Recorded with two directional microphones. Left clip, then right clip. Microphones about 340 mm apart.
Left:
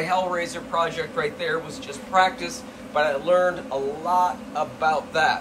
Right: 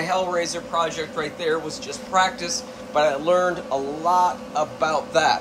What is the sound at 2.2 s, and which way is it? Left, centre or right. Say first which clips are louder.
A man's voice: even; centre.